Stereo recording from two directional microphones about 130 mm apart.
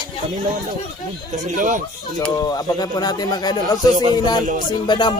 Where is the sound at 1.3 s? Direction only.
80° right.